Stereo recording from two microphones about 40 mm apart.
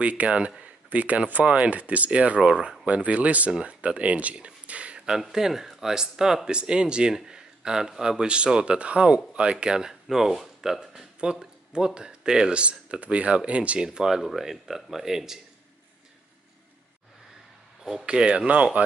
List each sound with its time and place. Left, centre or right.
0.0 s speech: right
2.4 s speech: centre
2.8 s speech: right
4.6 s a sound: right
5.3 s a man's voice: centre
10.0 s speech: centre
12.5 s speech: right
13.8 s speech: centre
18.0 s speech: right